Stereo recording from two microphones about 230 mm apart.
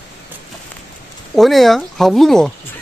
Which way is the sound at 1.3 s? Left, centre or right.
Centre.